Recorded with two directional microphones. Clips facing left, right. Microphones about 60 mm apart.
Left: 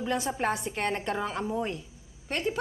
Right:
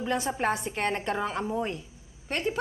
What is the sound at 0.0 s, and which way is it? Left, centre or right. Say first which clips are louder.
A woman's voice: right 1 dB; right.